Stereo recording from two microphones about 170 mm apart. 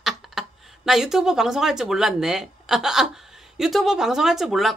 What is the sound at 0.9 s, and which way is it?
Speech, centre (ahead or behind).